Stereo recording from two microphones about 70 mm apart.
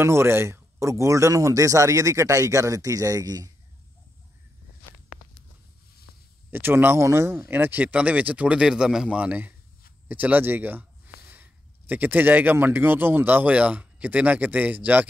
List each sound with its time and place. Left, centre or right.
0.0 s speech: right
6.5 s speech: right
10.0 s a sound: right
11.9 s speech: right